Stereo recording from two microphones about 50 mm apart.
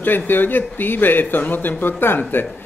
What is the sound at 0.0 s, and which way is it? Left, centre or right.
A man's voice, left.